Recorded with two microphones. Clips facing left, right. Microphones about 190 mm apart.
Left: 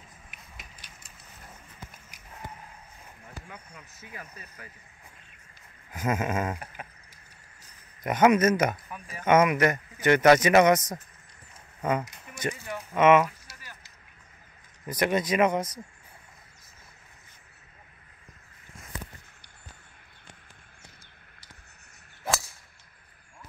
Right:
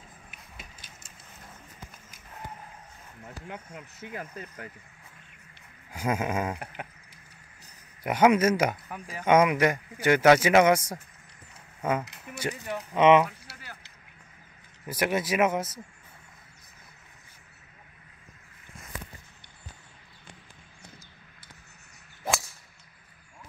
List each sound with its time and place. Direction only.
3.4 s speech: 85° right
5.9 s a man's voice: 10° right (ahead or behind)
8.0 s a man's voice: 10° right (ahead or behind)
8.9 s speech: 80° right
9.2 s a man's voice: 10° right (ahead or behind)
13.5 s a sound: 65° right (ahead or behind)
14.9 s a man's voice: 5° right (ahead or behind)